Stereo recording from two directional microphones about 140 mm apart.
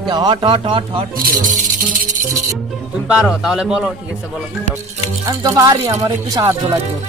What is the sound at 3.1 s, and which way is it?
Speech, 5° right (ahead or behind).